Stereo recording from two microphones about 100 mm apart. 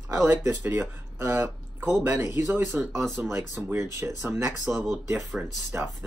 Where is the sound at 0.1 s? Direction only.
15° right (ahead or behind).